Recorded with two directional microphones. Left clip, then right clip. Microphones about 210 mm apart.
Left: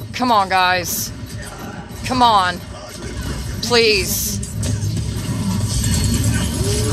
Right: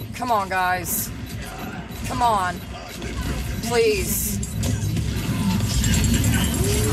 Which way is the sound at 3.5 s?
30° left (ahead or behind).